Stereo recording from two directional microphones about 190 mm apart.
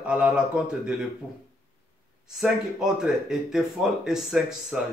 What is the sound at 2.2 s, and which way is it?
Speech, 5° right (ahead or behind).